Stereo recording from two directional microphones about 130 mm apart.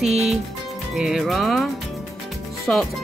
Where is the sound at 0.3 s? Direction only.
Centre (ahead or behind).